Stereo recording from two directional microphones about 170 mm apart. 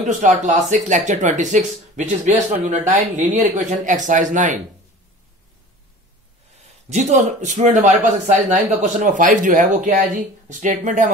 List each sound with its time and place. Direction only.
0.0 s speech: 45° right (ahead or behind)
6.9 s speech: 45° right (ahead or behind)